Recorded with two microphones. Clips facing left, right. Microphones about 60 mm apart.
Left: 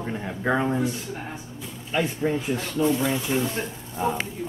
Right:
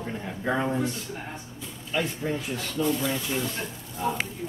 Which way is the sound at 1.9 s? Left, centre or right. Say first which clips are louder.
Left 4 dB; left.